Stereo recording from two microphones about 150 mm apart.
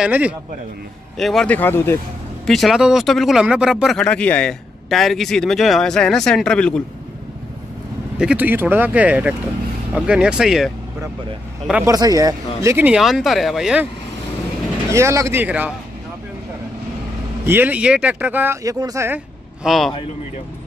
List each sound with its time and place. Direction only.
0.0 s speech: 10° right (ahead or behind); by 2.0 s 15° left (ahead or behind)
2.4 s speech: centre (ahead or behind)
8.2 s speech: 10° right (ahead or behind)
11.8 s speech: 25° right (ahead or behind)
12.7 s speech: 5° right (ahead or behind)
14.9 s speech: 20° right (ahead or behind)
17.5 s speech: 10° right (ahead or behind)
19.6 s speech: centre (ahead or behind)